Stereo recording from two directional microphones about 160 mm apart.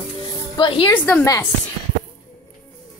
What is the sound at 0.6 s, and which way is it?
Speech, 35° left (ahead or behind).